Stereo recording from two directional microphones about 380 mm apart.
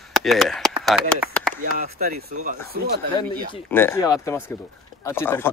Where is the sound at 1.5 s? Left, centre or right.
Right.